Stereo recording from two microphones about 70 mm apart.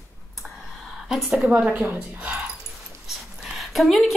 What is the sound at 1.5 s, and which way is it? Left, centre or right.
Speech, right.